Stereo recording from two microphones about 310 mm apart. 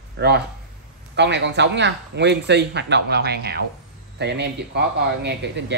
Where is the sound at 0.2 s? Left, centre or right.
Right.